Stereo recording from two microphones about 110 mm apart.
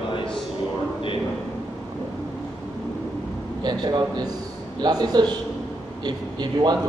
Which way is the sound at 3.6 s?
40° right (ahead or behind).